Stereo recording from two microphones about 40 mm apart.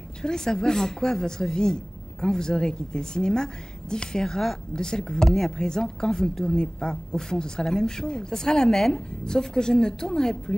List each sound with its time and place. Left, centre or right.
0.2 s a woman's voice: centre